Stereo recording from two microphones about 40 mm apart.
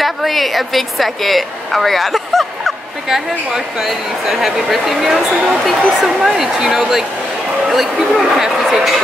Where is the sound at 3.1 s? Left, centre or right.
Centre.